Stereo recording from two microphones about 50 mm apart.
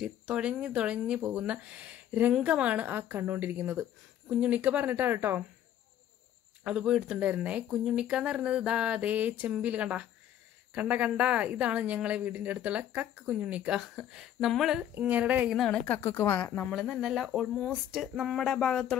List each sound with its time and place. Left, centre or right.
0.0 s a woman's voice: centre; by 3.8 s right
4.4 s a woman's voice: right
6.6 s speech: centre
7.2 s a woman's voice: right
7.8 s speech: centre
9.0 s a woman's voice: right; by 14.9 s centre
15.0 s a woman's voice: right
15.7 s a woman's voice: left
16.0 s speech: left
16.9 s speech: centre
18.3 s a sound: centre
18.7 s a sound: centre